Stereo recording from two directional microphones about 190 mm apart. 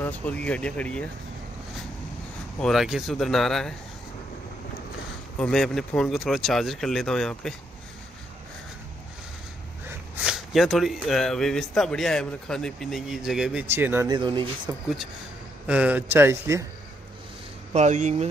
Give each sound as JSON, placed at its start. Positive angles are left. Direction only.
{"t": 0.0, "sound": "speech", "side_deg": 10}
{"t": 2.6, "sound": "speech", "side_deg": 0}
{"t": 5.4, "sound": "speech", "side_deg": 0}
{"t": 9.8, "sound": "speech", "side_deg": -5}
{"t": 14.1, "sound": "speech", "side_deg": -25}
{"t": 15.6, "sound": "speech", "side_deg": -5}
{"t": 17.7, "sound": "speech", "side_deg": -40}